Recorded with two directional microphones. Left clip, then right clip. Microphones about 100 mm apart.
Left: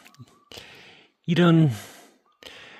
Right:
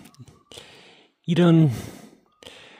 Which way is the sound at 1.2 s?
30° right (ahead or behind).